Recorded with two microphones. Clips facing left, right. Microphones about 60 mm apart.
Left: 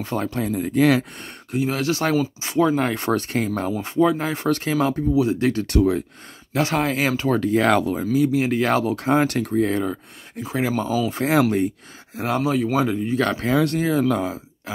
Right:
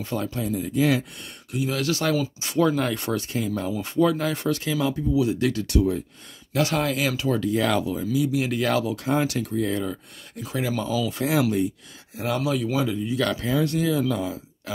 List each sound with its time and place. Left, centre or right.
0.0 s speech: left
1.2 s speech: left
3.1 s speech: left
4.0 s speech: left
4.5 s speech: left
6.5 s speech: left
12.2 s speech: left
13.5 s speech: left
13.7 s speech: left